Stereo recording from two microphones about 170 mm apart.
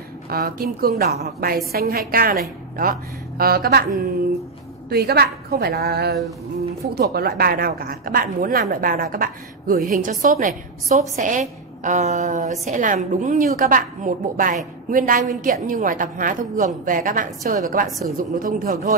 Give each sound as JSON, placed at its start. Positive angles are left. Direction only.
{"t": 0.3, "sound": "a woman's voice", "side_deg": -60}
{"t": 4.8, "sound": "a woman's voice", "side_deg": -65}